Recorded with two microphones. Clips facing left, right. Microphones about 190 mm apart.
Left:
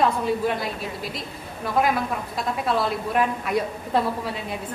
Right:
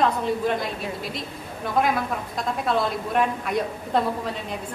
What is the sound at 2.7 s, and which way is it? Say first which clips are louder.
A woman's voice: even; 5° left (ahead or behind).